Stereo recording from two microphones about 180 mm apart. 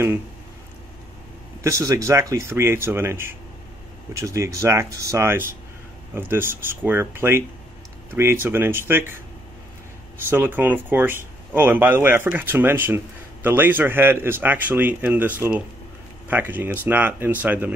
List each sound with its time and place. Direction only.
1.6 s speech: 15° right (ahead or behind)
10.3 s speech: 10° right (ahead or behind)